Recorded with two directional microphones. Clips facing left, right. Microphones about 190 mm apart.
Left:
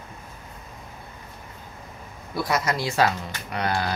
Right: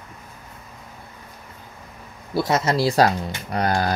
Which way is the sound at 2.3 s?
25° right (ahead or behind).